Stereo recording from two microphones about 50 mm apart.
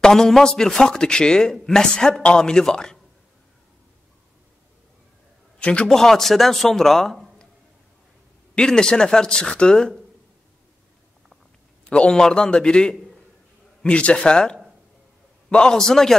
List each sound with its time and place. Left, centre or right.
0.0 s speech: centre
5.6 s a man's voice: left
5.9 s a man's voice: centre
8.5 s speech: centre
11.9 s speech: centre